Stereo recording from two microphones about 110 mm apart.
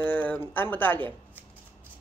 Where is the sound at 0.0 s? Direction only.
15° left (ahead or behind).